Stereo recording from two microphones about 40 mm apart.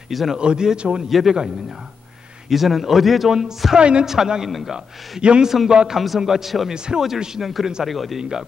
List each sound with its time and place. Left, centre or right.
0.1 s a man's voice: centre
0.4 s a man's voice: right
1.0 s a man's voice: centre
2.5 s a man's voice: centre
3.3 s speech: centre
4.5 s a man's voice: centre
5.2 s a man's voice: right
5.9 s a man's voice: centre
8.2 s speech: centre